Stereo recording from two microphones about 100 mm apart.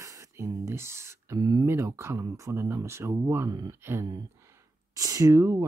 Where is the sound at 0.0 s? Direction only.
30° right (ahead or behind).